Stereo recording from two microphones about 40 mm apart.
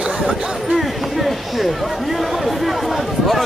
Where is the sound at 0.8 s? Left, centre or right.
Centre.